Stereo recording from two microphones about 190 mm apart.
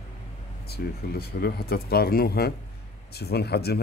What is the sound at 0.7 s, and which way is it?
Speech, 55° left (ahead or behind).